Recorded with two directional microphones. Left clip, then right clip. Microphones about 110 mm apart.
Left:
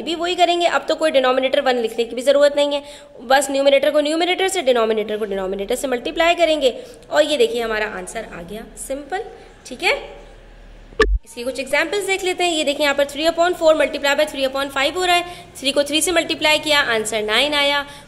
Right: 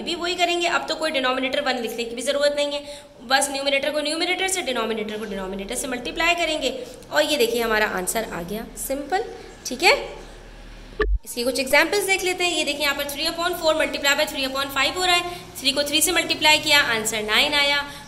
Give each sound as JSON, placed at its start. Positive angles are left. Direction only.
{"t": 0.0, "sound": "a woman's voice", "side_deg": 40}
{"t": 7.6, "sound": "a woman's voice", "side_deg": 0}
{"t": 11.3, "sound": "a woman's voice", "side_deg": -5}
{"t": 12.1, "sound": "a woman's voice", "side_deg": 15}
{"t": 12.4, "sound": "a woman's voice", "side_deg": 35}